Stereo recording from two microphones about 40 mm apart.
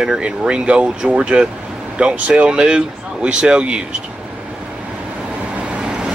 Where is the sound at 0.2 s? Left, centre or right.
Right.